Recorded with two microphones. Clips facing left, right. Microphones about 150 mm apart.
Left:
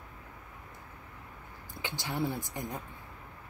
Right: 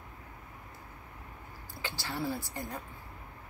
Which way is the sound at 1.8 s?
20° left (ahead or behind).